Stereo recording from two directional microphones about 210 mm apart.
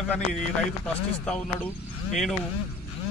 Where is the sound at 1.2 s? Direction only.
5° left (ahead or behind).